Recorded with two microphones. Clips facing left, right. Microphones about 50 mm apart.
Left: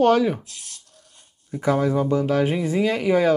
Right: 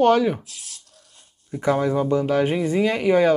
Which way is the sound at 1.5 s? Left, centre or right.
Right.